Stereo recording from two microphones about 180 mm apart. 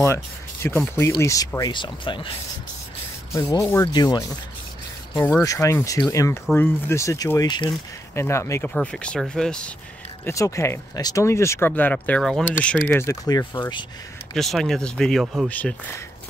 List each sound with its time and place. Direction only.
0.0 s speech: 15° left (ahead or behind)
3.3 s speech: 20° left (ahead or behind)
5.1 s speech: 10° left (ahead or behind)
10.2 s speech: 15° left (ahead or behind)
14.3 s speech: centre (ahead or behind)